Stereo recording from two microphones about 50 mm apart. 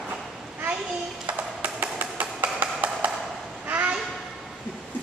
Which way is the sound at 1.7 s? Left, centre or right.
Right.